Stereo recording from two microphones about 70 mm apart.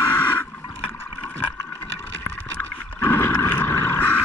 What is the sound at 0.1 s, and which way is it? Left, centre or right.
Water, left.